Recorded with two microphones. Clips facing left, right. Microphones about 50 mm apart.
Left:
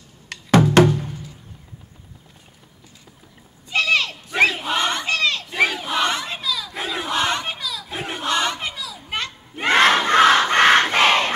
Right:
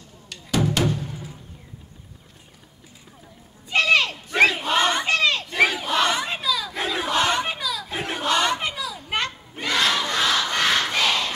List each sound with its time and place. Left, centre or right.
0.3 s drum: left
3.7 s a sound: centre
4.3 s battle cry: centre
4.9 s crowd: centre
5.5 s crowd: centre
6.4 s battle cry: centre
7.9 s crowd: centre
8.5 s children playing: centre
9.6 s battle cry: left